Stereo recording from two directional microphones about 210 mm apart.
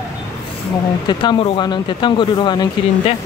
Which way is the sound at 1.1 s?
20° left (ahead or behind).